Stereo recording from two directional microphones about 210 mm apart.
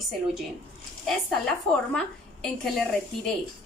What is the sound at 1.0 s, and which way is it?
A woman's voice, 5° left (ahead or behind).